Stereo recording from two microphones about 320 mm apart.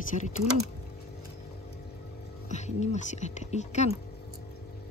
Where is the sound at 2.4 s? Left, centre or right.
Left.